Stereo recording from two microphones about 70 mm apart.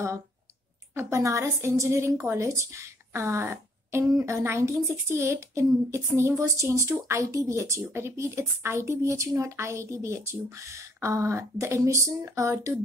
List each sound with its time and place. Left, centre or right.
0.9 s a woman's voice: right